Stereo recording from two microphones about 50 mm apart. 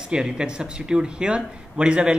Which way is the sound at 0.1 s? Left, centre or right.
Centre.